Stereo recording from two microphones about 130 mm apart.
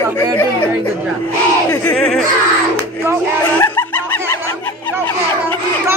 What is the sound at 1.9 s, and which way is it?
Music, 5° left (ahead or behind).